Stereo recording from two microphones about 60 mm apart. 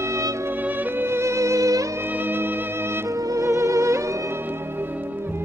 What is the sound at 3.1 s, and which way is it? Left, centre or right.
Music, right.